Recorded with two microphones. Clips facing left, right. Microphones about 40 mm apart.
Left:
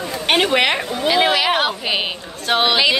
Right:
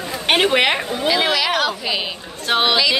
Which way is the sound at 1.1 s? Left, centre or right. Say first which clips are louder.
Left 3 dB; centre.